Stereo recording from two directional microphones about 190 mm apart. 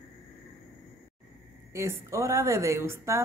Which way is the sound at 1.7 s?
15° right (ahead or behind).